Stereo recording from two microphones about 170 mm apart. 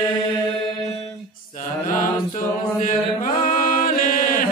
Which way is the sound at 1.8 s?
55° left (ahead or behind).